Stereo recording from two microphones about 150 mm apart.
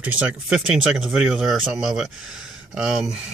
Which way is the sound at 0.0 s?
10° right (ahead or behind).